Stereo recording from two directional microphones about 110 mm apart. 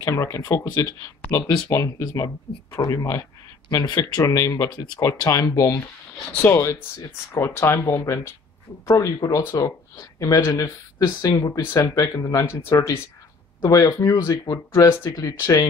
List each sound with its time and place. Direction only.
0.0 s speech: 30° left (ahead or behind)
14.1 s speech: 35° left (ahead or behind)